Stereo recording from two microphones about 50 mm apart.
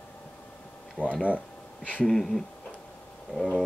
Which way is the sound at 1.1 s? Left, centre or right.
Right.